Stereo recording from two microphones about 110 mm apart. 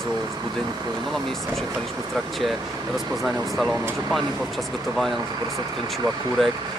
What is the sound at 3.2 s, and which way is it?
Speech, centre (ahead or behind).